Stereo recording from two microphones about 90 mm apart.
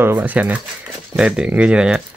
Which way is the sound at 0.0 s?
20° right (ahead or behind).